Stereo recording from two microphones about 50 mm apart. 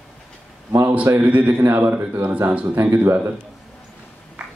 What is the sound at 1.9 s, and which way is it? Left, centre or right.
Speech, right.